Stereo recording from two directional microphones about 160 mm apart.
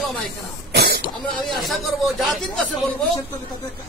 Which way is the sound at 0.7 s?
90° right.